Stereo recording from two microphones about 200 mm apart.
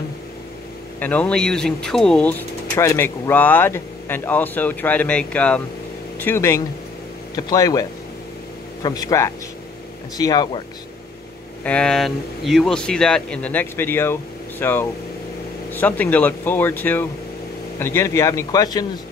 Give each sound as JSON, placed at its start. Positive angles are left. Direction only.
{"t": 0.9, "sound": "speech", "side_deg": 10}
{"t": 8.8, "sound": "speech", "side_deg": 20}
{"t": 11.6, "sound": "speech", "side_deg": 5}